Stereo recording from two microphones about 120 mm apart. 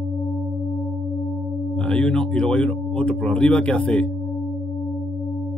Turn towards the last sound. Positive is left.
turn(degrees=10)  # may be behind; listen again after turning